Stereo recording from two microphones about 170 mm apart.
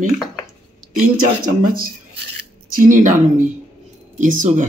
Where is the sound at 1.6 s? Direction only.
60° right (ahead or behind).